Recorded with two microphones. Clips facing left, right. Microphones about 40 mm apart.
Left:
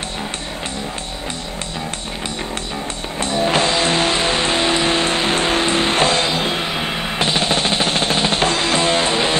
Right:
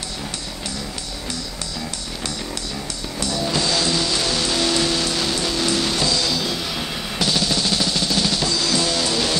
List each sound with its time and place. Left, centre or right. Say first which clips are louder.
3.2 s music: left 6 dB; left